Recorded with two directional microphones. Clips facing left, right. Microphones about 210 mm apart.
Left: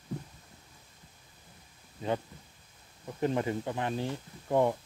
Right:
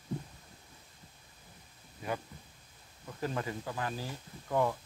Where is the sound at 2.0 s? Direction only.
25° left (ahead or behind).